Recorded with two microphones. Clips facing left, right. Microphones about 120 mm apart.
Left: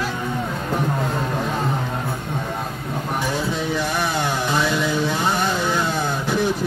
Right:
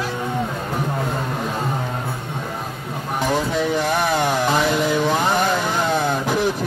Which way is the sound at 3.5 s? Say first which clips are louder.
Right 3 dB; 55° right (ahead or behind).